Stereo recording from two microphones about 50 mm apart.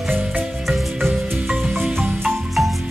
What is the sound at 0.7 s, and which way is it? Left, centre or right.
Marimba, centre.